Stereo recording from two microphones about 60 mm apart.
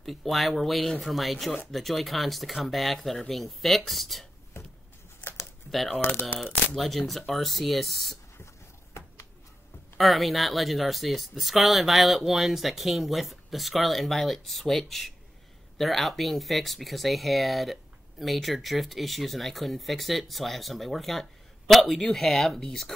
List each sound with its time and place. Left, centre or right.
0.0 s speech: centre
5.4 s crumpling: centre
5.9 s speech: left
6.2 s speech: centre
9.0 s a sound: left
9.9 s speech: centre